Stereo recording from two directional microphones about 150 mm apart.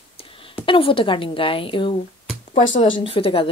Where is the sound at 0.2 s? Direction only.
35° left (ahead or behind).